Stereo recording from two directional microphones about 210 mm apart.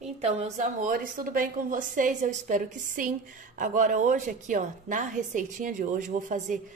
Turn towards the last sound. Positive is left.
turn(degrees=-35)  # may be behind; listen again after turning